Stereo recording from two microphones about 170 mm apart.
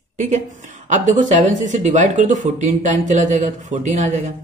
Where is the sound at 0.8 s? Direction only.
45° right (ahead or behind).